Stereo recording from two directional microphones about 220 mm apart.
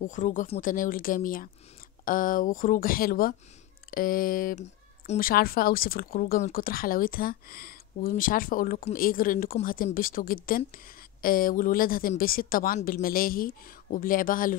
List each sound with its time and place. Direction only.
0.0 s speech: 35° left (ahead or behind)